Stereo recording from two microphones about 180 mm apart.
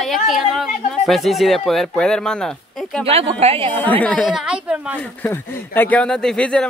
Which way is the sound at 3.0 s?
35° right (ahead or behind).